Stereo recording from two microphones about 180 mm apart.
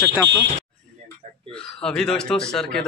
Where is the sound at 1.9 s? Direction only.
5° left (ahead or behind).